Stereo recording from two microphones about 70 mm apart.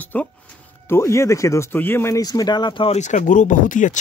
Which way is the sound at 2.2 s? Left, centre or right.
Left.